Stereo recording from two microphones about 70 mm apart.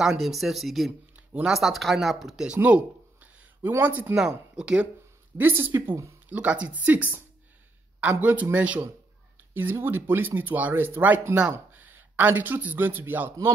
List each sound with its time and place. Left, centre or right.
0.0 s speech: centre
1.1 s a sound: centre
1.5 s speech: centre
2.5 s a sound: right
3.8 s speech: right
4.1 s speech: centre
5.4 s speech: right
6.2 s a man's voice: centre